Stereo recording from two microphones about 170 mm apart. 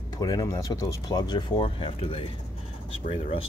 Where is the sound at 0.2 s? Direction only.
20° left (ahead or behind).